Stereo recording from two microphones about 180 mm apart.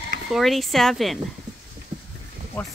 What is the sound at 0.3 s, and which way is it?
Speech, centre (ahead or behind).